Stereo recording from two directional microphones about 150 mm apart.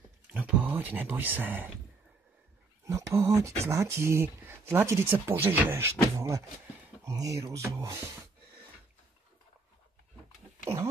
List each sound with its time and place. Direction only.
0.3 s speech: 10° right (ahead or behind)
2.8 s speech: 20° right (ahead or behind)
10.6 s speech: 20° right (ahead or behind)